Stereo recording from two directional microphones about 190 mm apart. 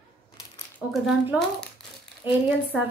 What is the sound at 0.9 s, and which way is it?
A woman's voice, centre (ahead or behind).